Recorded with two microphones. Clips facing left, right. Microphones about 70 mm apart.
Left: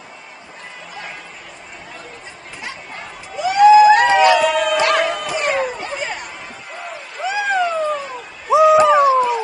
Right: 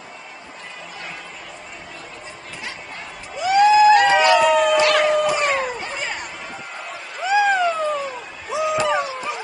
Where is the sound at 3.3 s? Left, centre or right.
Centre.